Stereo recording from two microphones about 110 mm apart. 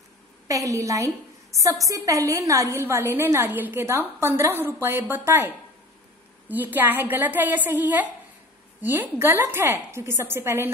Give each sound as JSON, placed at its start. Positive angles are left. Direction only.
{"t": 0.5, "sound": "a woman's voice", "side_deg": -30}
{"t": 6.5, "sound": "a woman's voice", "side_deg": -15}